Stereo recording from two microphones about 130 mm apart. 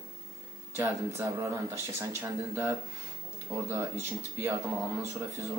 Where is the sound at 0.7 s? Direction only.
20° right (ahead or behind).